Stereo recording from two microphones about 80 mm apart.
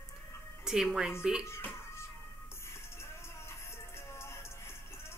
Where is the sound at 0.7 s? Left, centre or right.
Centre.